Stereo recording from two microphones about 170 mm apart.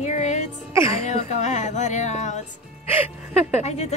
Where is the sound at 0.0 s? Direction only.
45° left (ahead or behind).